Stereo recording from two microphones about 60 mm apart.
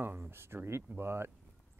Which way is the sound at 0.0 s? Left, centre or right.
Right.